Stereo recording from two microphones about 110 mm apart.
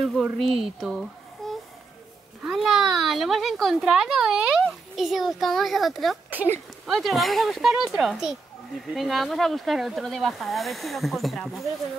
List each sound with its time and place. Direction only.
0.0 s speech: centre (ahead or behind)
1.4 s a sound: centre (ahead or behind)
2.4 s speech: centre (ahead or behind)
6.4 s speech: 15° right (ahead or behind)
6.9 s speech: centre (ahead or behind)